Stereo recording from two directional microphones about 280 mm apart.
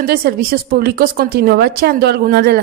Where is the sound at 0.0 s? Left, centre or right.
Right.